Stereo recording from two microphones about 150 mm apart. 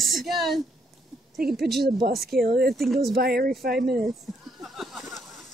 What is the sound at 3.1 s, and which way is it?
Speech, 90° right.